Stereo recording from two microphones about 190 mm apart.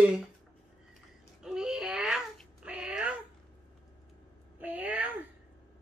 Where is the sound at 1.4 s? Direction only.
5° right (ahead or behind).